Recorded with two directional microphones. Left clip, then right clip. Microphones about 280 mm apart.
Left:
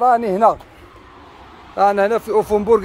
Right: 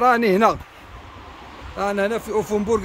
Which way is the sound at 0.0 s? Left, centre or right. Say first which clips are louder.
Left 2 dB; centre.